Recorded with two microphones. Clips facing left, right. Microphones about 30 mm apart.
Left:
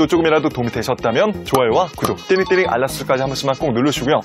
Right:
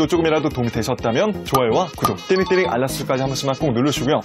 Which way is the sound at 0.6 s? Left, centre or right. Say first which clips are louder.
Left 1 dB; left.